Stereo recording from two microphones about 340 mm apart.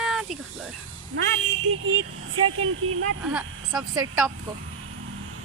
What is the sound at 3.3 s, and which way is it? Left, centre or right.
Speech, centre.